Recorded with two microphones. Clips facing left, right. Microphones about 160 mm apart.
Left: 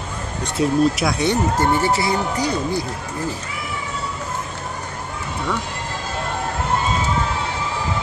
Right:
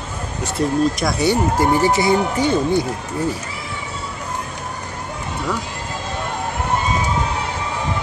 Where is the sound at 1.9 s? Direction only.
25° right (ahead or behind).